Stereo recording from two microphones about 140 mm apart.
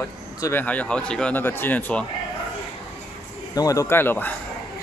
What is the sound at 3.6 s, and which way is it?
Speech, 25° left (ahead or behind).